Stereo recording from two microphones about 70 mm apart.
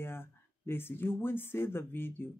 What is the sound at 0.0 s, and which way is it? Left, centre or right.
Speech, left.